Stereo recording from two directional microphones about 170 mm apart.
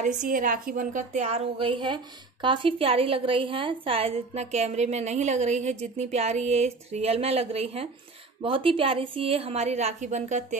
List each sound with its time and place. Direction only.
0.0 s a woman's voice: 50° right (ahead or behind)